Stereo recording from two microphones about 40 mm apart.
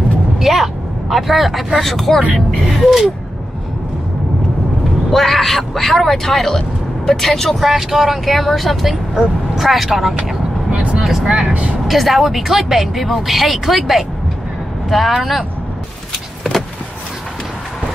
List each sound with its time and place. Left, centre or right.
0.4 s vehicle: centre
1.8 s speech: centre
5.1 s speech: centre
7.6 s speech: centre
10.7 s vehicle: right
11.2 s speech: centre